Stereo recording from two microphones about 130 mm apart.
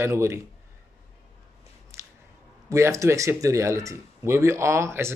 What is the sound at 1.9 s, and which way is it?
Squish, 20° right (ahead or behind).